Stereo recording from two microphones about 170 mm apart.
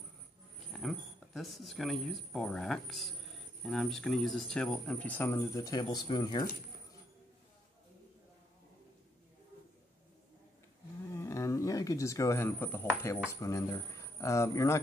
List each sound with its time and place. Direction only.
0.7 s speech: centre (ahead or behind); by 6.4 s 25° left (ahead or behind)
11.1 s speech: 15° left (ahead or behind)